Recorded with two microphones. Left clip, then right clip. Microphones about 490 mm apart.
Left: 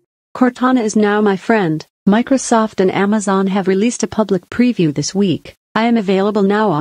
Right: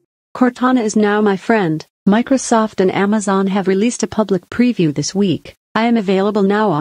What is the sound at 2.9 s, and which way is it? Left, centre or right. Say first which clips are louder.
Speech: even; left.